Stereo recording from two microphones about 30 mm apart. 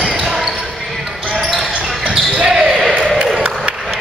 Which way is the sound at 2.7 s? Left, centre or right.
Centre.